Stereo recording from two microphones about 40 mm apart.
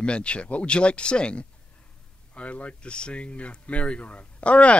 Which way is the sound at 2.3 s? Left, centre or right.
Left.